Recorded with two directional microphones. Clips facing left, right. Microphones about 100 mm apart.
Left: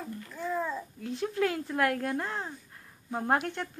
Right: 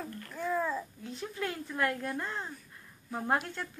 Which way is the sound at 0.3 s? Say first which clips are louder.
Right 1 dB; centre (ahead or behind).